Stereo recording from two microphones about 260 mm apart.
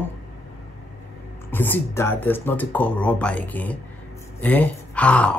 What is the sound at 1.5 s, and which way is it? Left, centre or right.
Speech, centre.